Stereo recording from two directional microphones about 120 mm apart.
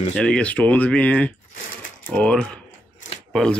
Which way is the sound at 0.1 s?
10° left (ahead or behind).